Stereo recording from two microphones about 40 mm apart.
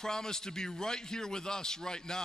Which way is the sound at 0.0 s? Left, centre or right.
Centre.